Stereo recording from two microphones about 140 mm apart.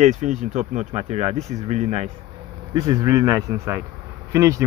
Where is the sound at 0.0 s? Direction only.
60° right (ahead or behind).